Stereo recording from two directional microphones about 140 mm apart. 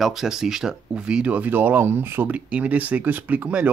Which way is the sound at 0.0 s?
Centre (ahead or behind).